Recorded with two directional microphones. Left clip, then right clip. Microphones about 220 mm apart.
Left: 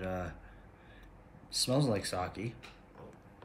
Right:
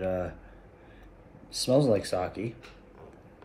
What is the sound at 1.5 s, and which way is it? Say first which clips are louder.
Speech: right 8 dB; 25° left (ahead or behind).